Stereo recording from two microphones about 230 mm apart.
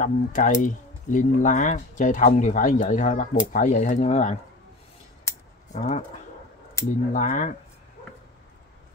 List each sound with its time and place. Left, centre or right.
0.0 s speech: left
5.7 s speech: left
7.1 s speech: left